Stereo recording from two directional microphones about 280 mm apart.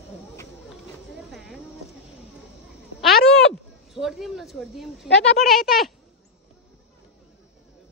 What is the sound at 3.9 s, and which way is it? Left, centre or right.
Speech, centre.